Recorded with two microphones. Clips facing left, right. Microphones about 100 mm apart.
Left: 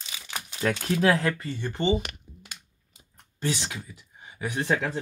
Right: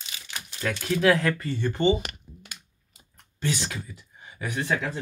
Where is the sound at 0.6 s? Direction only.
35° left (ahead or behind).